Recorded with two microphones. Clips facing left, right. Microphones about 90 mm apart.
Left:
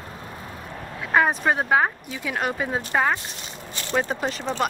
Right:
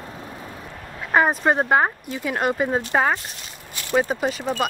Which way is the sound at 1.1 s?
5° right (ahead or behind).